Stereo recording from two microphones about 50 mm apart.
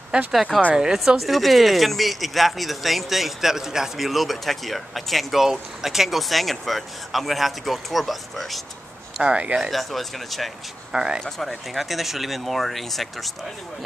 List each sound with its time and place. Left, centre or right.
0.3 s speech: centre
9.2 s speech: right
9.7 s speech: centre
10.9 s speech: centre
11.2 s speech: centre